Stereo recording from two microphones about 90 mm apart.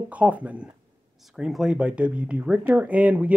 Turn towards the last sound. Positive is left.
turn(degrees=-15)  # may be behind; listen again after turning